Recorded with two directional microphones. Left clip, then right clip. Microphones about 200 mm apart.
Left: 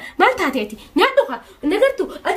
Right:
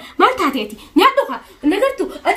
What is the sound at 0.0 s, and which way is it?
A woman's voice, 25° left (ahead or behind).